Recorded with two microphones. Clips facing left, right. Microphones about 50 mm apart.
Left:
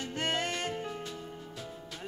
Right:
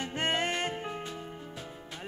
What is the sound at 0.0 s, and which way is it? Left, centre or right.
Music, right.